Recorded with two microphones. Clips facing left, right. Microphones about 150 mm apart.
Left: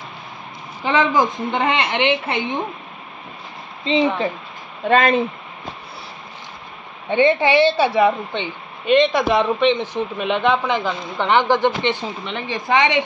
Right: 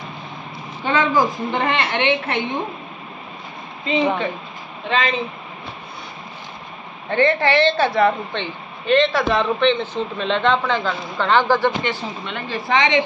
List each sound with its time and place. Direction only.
0.8 s a woman's voice: 15° left (ahead or behind)
4.8 s speech: 50° left (ahead or behind)
7.1 s a woman's voice: 15° left (ahead or behind)